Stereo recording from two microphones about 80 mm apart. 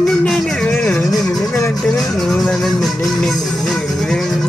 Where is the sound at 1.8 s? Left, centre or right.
Centre.